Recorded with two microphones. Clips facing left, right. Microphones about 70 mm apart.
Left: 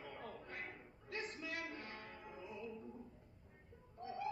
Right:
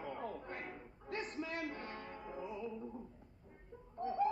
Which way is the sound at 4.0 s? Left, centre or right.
Right.